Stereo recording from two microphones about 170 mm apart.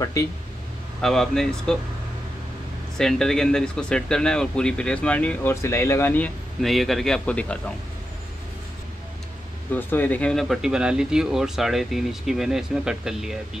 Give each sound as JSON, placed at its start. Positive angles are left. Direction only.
{"t": 0.2, "sound": "speech", "side_deg": 20}
{"t": 1.0, "sound": "speech", "side_deg": 0}
{"t": 3.0, "sound": "speech", "side_deg": 5}
{"t": 9.7, "sound": "speech", "side_deg": 10}